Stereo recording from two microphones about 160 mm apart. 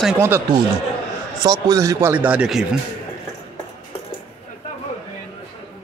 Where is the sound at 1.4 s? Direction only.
20° right (ahead or behind); by 2.6 s 5° right (ahead or behind).